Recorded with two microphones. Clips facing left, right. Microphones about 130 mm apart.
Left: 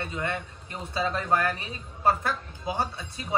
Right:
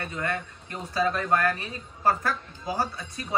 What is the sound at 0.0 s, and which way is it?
Speech, 25° left (ahead or behind).